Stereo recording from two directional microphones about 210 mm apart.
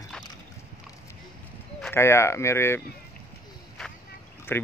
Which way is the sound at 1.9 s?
15° left (ahead or behind).